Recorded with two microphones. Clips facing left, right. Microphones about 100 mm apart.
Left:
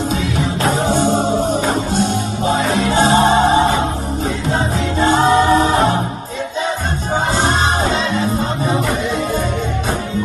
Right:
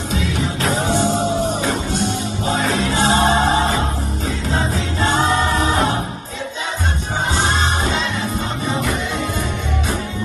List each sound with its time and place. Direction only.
0.1 s music: 35° left (ahead or behind)